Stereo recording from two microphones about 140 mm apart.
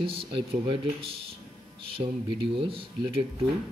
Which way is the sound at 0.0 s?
40° right (ahead or behind).